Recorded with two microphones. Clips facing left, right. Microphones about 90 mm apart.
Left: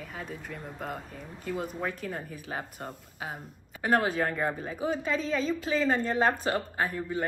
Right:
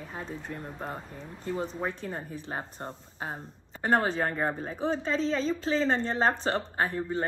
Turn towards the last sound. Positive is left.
turn(degrees=-30)  # may be behind; listen again after turning